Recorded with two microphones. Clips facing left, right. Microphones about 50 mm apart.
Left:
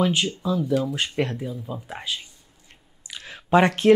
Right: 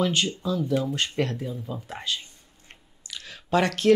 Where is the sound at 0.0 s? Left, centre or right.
Centre.